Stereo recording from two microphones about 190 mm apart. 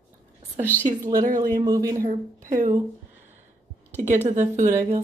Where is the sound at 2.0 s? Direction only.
45° right (ahead or behind).